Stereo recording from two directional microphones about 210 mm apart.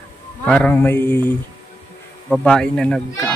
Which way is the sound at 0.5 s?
5° left (ahead or behind).